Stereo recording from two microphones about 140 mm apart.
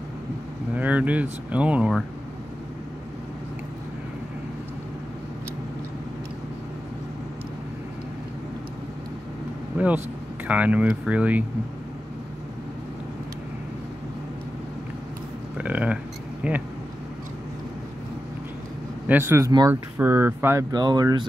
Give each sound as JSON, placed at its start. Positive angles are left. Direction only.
{"t": 0.7, "sound": "speech", "side_deg": -10}
{"t": 10.4, "sound": "speech", "side_deg": -10}
{"t": 15.5, "sound": "speech", "side_deg": -10}
{"t": 19.0, "sound": "speech", "side_deg": -15}
{"t": 20.7, "sound": "speech", "side_deg": -30}